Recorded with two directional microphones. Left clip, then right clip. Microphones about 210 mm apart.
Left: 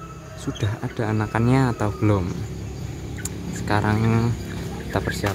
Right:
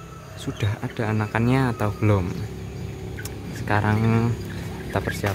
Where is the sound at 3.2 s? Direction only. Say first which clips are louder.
Left 1 dB; centre (ahead or behind).